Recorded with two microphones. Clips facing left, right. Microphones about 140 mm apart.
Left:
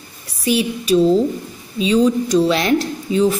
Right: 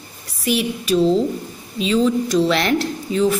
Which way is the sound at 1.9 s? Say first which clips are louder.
Left 2 dB; 15° left (ahead or behind).